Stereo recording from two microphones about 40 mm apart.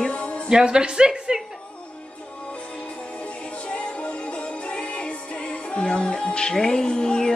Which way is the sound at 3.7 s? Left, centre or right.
Left.